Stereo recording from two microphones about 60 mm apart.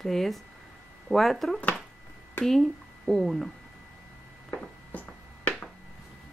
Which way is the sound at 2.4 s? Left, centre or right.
Centre.